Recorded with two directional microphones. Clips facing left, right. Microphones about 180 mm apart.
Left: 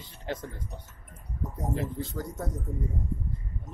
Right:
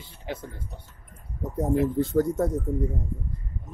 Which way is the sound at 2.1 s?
45° right (ahead or behind).